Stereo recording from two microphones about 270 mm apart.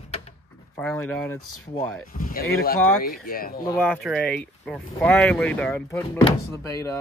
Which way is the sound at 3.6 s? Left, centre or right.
Centre.